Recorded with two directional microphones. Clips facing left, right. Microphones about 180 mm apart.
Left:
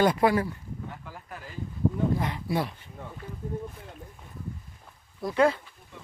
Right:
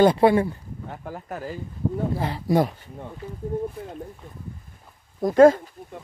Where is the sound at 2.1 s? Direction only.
35° right (ahead or behind).